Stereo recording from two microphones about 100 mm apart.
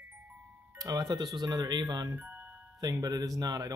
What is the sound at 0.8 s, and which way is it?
Speech, 40° right (ahead or behind).